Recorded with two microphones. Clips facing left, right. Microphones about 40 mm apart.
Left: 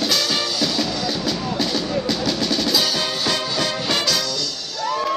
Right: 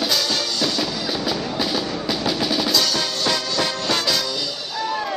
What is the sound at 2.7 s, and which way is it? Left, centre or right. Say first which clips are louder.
Music: even; centre.